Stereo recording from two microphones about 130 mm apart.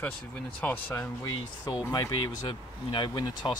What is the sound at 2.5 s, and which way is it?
Speech, 40° left (ahead or behind).